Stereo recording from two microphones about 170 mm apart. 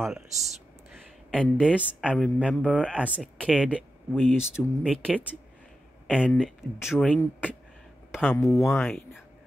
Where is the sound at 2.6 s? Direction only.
10° left (ahead or behind).